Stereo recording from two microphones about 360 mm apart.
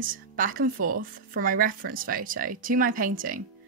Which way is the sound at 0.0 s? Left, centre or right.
Right.